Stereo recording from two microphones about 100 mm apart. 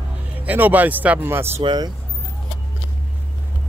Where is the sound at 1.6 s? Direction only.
50° right (ahead or behind).